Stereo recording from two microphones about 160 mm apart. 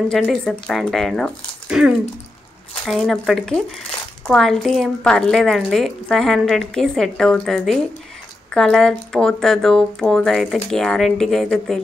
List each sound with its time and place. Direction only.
0.1 s a woman's voice: centre (ahead or behind)